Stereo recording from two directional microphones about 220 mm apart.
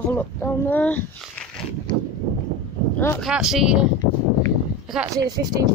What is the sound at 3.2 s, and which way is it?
Speech, centre (ahead or behind).